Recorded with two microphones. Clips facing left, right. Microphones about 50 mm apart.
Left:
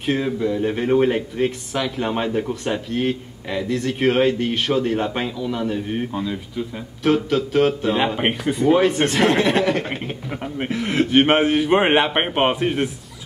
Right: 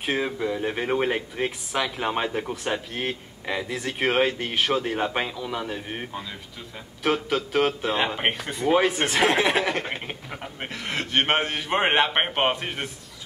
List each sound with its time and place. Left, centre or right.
0.0 s speech: centre